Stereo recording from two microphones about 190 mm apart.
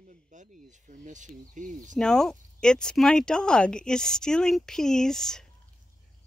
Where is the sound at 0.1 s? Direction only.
40° right (ahead or behind).